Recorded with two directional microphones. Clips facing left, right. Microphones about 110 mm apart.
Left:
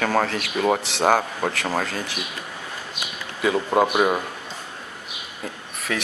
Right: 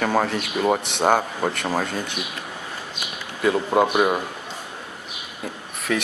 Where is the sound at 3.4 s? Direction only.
Centre (ahead or behind).